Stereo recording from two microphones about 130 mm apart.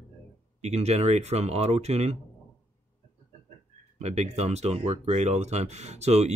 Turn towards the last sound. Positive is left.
turn(degrees=-55)  # may be behind; listen again after turning